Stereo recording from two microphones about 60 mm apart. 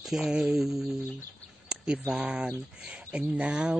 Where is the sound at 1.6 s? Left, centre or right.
Centre.